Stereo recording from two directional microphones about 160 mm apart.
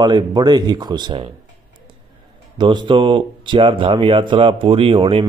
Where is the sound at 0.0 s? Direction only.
25° right (ahead or behind).